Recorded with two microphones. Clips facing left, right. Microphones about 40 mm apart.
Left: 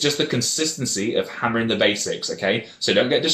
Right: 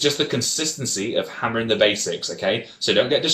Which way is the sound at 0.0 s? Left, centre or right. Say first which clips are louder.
Even; centre.